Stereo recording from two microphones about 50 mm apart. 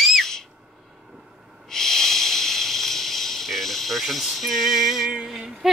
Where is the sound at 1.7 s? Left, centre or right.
Centre.